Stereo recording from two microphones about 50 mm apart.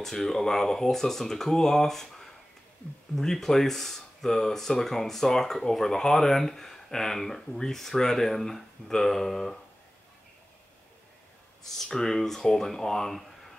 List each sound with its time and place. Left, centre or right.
0.0 s speech: centre
11.8 s speech: centre